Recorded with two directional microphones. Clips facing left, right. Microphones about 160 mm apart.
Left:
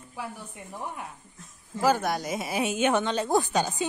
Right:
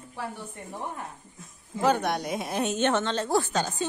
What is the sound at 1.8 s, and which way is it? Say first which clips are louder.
Speech: even; 5° left (ahead or behind).